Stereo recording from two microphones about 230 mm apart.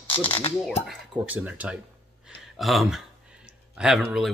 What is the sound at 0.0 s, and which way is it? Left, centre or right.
Speech, left.